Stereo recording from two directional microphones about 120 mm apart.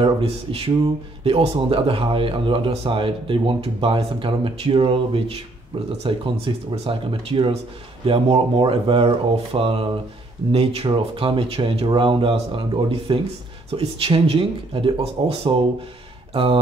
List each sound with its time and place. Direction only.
0.0 s speech: 55° right (ahead or behind)